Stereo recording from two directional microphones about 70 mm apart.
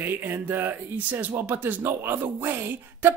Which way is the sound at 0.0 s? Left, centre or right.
Right.